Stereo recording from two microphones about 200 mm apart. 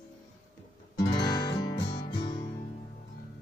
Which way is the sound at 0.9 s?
20° left (ahead or behind).